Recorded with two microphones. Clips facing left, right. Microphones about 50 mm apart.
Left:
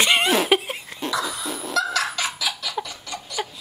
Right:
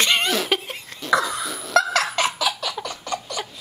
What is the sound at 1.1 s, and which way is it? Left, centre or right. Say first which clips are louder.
Cough: right 7 dB; right.